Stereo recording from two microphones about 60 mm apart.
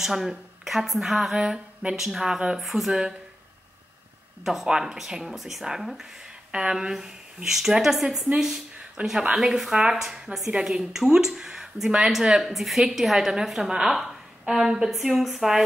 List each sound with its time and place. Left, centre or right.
0.0 s a woman's voice: centre
4.5 s speech: centre
9.0 s speech: right
9.3 s speech: centre